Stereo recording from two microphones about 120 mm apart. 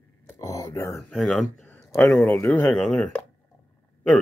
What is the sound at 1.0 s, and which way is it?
Speech, 5° left (ahead or behind).